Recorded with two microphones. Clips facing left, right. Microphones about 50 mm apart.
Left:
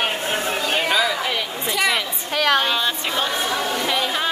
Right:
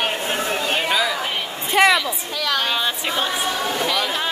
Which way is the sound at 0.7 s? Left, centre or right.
Centre.